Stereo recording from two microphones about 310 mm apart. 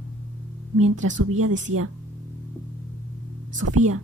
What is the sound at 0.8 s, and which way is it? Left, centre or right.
Speech, right.